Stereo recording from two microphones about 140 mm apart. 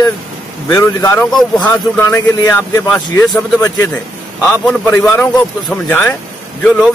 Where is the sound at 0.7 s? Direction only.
20° left (ahead or behind).